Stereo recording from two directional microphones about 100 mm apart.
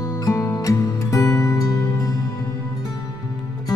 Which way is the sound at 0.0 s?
35° left (ahead or behind).